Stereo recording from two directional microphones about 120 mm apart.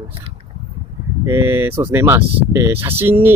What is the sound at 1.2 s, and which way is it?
Speech, 20° right (ahead or behind).